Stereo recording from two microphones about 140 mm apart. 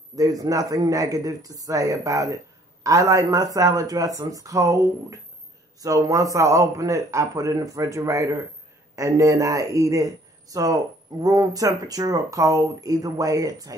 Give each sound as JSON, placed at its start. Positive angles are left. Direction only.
{"t": 0.1, "sound": "speech", "side_deg": -25}